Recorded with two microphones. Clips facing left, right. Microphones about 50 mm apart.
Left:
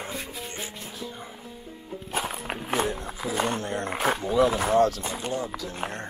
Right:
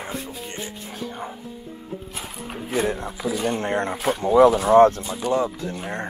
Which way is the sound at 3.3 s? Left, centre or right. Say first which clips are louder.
Right 1 dB; left.